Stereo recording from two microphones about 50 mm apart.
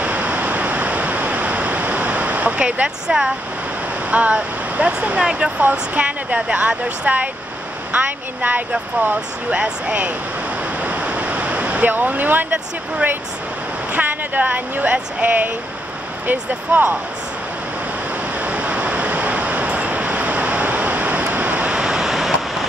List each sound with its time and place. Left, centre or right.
0.0 s waterfall: right
3.1 s speech: right
5.6 s speech: right
9.5 s speech: right
10.8 s waves: right
11.9 s speech: right
18.4 s a sound: right; by 22.7 s centre